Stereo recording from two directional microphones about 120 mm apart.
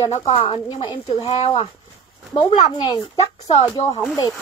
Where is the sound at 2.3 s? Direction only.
40° left (ahead or behind).